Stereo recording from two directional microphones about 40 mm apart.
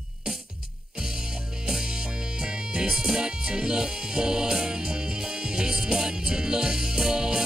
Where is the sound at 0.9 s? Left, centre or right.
Centre.